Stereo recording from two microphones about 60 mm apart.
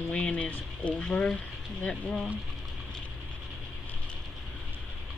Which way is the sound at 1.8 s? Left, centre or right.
Centre.